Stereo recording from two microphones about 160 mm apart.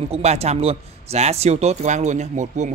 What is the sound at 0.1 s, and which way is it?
Speech, 40° right (ahead or behind).